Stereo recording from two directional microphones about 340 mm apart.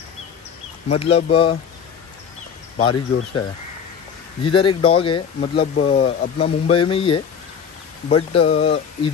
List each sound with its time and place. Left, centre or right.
0.8 s speech: centre
2.8 s speech: centre
4.5 s speech: centre